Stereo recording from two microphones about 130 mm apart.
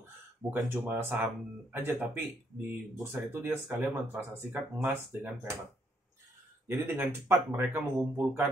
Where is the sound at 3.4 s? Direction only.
20° right (ahead or behind).